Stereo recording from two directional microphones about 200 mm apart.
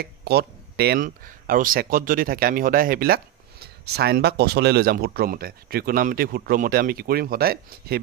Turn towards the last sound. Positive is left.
turn(degrees=-50)  # may be behind; listen again after turning